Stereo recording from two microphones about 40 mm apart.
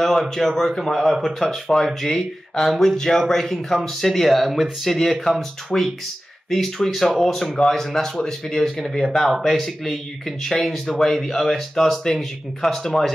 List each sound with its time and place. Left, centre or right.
0.0 s speech: centre
5.7 s speech: centre